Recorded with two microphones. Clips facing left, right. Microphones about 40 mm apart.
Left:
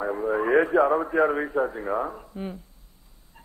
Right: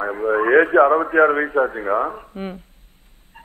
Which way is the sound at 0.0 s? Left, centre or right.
Right.